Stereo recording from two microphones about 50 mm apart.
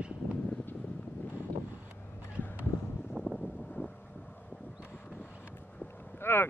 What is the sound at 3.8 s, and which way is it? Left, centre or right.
Vehicle, left.